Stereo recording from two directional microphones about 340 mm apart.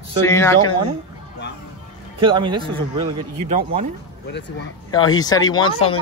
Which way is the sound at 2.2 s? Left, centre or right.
Centre.